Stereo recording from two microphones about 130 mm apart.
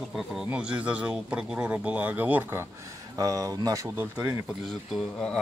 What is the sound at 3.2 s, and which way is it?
Speech, 25° right (ahead or behind).